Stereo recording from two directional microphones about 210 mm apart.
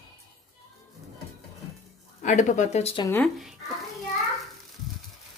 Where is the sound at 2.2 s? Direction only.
35° left (ahead or behind).